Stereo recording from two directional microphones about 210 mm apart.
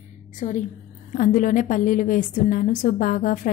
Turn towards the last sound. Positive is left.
turn(degrees=40)  # may be behind; listen again after turning